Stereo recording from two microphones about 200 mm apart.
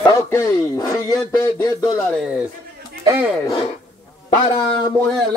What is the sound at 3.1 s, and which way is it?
Speech, 10° right (ahead or behind).